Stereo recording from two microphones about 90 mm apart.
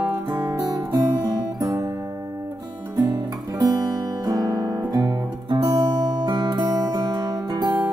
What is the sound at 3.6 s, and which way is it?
Guitar, 45° right (ahead or behind).